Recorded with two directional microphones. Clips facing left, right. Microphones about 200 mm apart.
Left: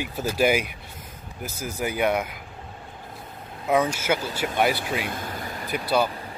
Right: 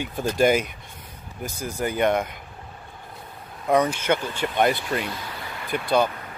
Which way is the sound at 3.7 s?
5° left (ahead or behind).